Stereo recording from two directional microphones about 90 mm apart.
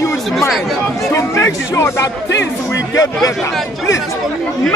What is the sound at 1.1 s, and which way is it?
A man's voice, 30° left (ahead or behind).